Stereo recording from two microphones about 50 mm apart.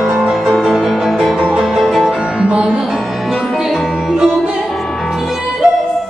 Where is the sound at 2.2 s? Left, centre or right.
Centre.